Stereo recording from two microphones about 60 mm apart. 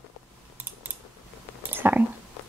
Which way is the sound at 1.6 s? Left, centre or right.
Right.